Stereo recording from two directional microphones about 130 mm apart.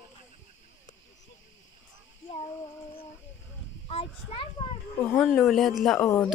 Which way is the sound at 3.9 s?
50° left (ahead or behind).